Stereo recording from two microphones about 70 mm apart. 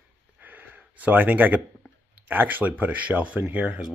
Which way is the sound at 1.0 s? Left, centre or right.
Right.